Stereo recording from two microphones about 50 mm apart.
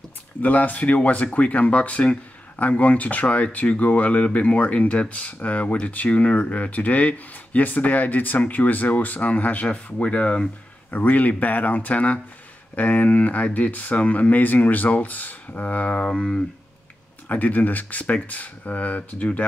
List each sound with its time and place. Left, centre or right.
0.4 s speech: left
10.9 s speech: left
17.3 s speech: left